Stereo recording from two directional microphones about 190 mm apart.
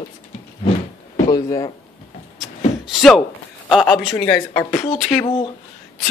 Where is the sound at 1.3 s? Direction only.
20° left (ahead or behind).